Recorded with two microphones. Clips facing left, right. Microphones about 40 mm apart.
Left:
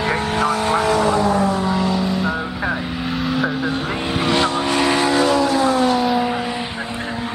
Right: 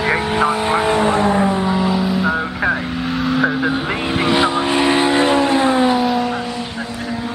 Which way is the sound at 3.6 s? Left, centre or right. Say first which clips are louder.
Right 3 dB; centre.